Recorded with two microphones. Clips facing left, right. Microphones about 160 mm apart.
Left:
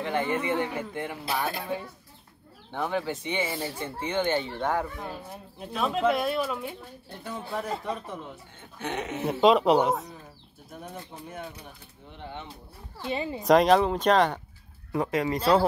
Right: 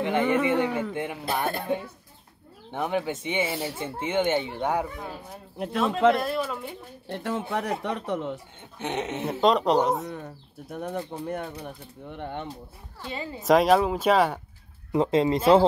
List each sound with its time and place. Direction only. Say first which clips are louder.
0.0 s speech: right 5 dB; 20° right (ahead or behind)
2.7 s speech: right 2 dB; 20° right (ahead or behind)
4.9 s speech: even; centre (ahead or behind)
7.1 s speech: right 7 dB; 75° right (ahead or behind)
8.7 s speech: right 2 dB; 20° right (ahead or behind)
9.2 s speech: left 2 dB; centre (ahead or behind)
10.1 s speech: right 9 dB; 70° right (ahead or behind); by 12.4 s 55° right (ahead or behind)
13.0 s speech: left 4 dB; 20° left (ahead or behind)
13.4 s speech: even; centre (ahead or behind)
14.9 s speech: right 5 dB; 25° right (ahead or behind)